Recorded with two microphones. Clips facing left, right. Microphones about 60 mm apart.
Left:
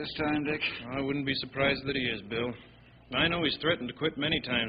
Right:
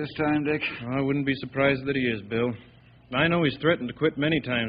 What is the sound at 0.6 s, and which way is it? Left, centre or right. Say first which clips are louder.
A man's voice: right 6 dB; right.